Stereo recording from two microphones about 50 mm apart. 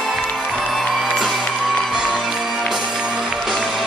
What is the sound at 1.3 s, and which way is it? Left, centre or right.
Music, centre.